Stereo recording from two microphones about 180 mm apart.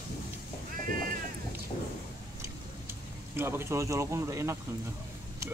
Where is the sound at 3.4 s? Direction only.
15° right (ahead or behind).